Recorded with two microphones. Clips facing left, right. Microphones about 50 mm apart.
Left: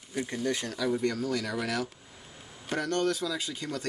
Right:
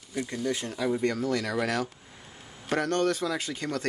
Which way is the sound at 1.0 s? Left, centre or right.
Right.